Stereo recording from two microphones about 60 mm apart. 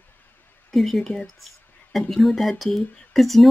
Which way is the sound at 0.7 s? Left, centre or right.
Centre.